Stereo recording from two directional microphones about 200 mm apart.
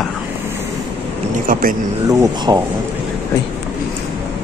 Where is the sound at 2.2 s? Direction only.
20° right (ahead or behind).